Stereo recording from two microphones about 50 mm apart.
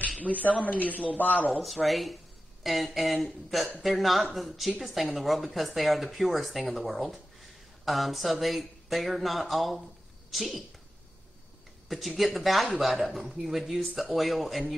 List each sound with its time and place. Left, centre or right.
0.2 s speech: left
1.5 s speech: centre
11.9 s speech: centre